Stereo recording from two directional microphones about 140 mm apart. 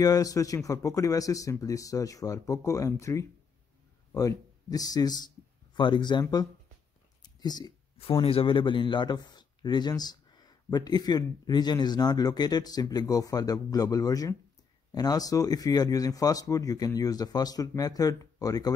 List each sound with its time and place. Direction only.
0.0 s a man's voice: 25° left (ahead or behind)
7.2 s a sound: 30° left (ahead or behind)
8.0 s a man's voice: 40° left (ahead or behind)